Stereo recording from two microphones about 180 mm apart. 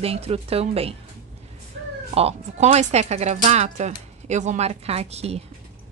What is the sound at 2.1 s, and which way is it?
Speech, 35° right (ahead or behind).